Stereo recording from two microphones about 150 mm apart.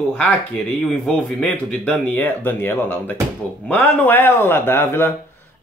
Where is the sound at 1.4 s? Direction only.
5° left (ahead or behind).